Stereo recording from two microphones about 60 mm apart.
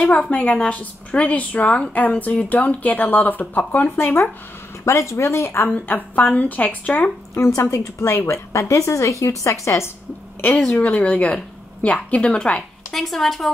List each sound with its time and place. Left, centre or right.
0.0 s speech: centre
0.3 s a woman's voice: left
4.8 s speech: left
5.7 s a woman's voice: left
7.3 s a woman's voice: left
10.7 s a woman's voice: left
12.9 s speech: centre